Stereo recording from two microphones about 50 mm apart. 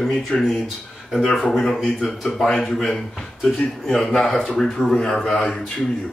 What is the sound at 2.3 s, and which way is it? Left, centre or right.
A man's voice, centre.